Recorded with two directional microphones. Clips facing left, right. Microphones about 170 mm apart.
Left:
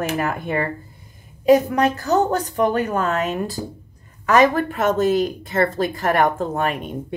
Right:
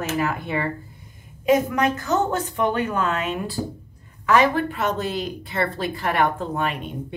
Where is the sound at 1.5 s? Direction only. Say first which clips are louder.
Left 4 dB; 35° left (ahead or behind).